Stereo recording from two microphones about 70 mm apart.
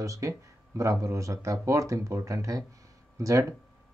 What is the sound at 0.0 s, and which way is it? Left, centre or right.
Speech, right.